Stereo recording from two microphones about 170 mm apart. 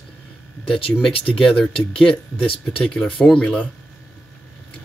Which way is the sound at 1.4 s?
5° left (ahead or behind).